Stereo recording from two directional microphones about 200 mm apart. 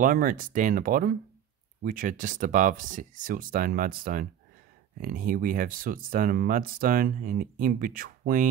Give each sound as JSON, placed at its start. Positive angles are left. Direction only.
{"t": 0.0, "sound": "speech", "side_deg": -45}